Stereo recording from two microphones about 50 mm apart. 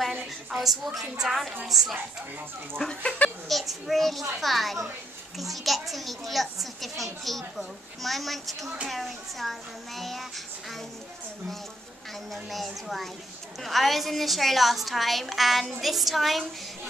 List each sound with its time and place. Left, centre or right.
0.1 s a sound: right
0.6 s a child's voice: centre
3.4 s a child's voice: centre
12.3 s a child's voice: centre